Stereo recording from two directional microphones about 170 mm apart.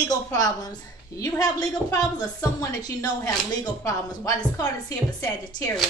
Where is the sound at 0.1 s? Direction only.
20° left (ahead or behind).